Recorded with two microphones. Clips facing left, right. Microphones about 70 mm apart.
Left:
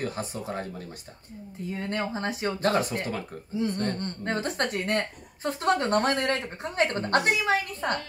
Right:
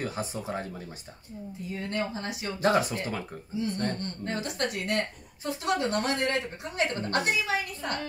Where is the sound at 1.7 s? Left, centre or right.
Left.